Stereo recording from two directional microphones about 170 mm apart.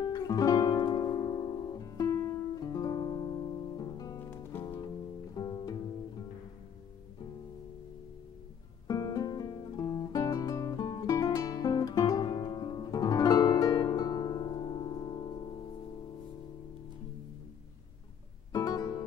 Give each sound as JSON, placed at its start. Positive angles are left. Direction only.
{"t": 0.0, "sound": "music", "side_deg": 20}
{"t": 8.8, "sound": "guitar", "side_deg": 20}
{"t": 18.5, "sound": "music", "side_deg": 20}